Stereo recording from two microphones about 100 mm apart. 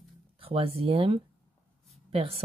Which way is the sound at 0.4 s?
70° right (ahead or behind).